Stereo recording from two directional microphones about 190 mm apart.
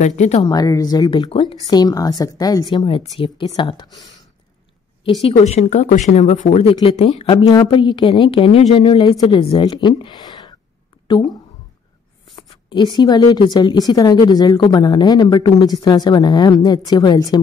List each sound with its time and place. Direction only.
0.0 s speech: 35° left (ahead or behind)
0.5 s speech: 20° left (ahead or behind)
5.2 s speech: 35° left (ahead or behind)
12.4 s speech: 20° left (ahead or behind)